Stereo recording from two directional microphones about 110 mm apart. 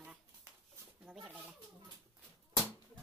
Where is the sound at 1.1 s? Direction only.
20° right (ahead or behind).